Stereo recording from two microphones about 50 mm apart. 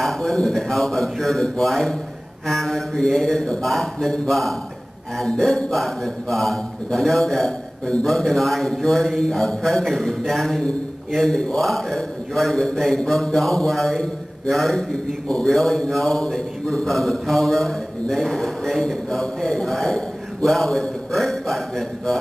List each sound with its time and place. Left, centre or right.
0.0 s mantra: centre
7.8 s a man's voice: centre
8.1 s mantra: centre